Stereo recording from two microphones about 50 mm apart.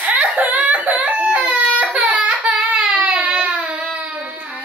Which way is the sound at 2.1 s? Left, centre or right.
Centre.